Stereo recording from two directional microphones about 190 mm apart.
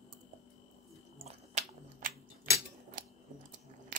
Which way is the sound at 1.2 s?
35° right (ahead or behind).